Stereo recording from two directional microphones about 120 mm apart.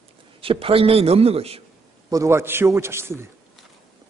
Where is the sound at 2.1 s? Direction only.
25° right (ahead or behind).